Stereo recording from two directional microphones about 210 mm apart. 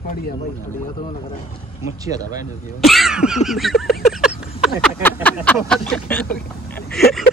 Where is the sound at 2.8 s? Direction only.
Centre (ahead or behind).